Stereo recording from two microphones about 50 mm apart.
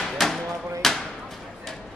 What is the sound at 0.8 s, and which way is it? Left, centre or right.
Speech, centre.